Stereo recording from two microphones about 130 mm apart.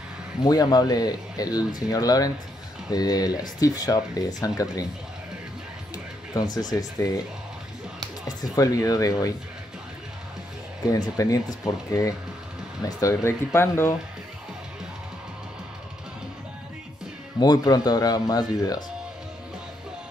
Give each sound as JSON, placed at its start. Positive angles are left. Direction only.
{"t": 0.4, "sound": "speech", "side_deg": 30}
{"t": 6.3, "sound": "speech", "side_deg": 30}
{"t": 8.3, "sound": "speech", "side_deg": 30}
{"t": 10.9, "sound": "speech", "side_deg": 25}
{"t": 17.4, "sound": "speech", "side_deg": 30}